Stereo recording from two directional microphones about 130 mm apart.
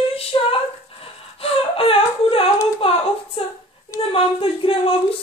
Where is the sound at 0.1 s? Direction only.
45° left (ahead or behind).